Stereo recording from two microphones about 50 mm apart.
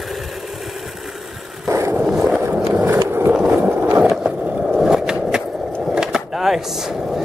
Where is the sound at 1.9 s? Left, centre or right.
Centre.